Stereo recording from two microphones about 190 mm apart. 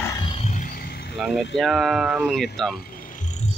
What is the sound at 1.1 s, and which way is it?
Speech, centre (ahead or behind).